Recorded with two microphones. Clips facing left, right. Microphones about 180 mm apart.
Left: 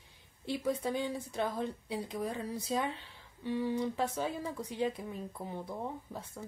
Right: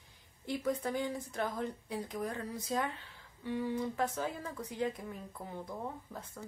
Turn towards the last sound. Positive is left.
turn(degrees=10)  # may be behind; listen again after turning